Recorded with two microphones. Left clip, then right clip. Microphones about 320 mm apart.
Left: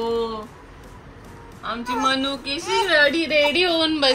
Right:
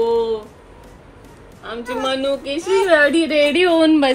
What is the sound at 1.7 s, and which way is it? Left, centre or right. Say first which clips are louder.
Speech: even; left.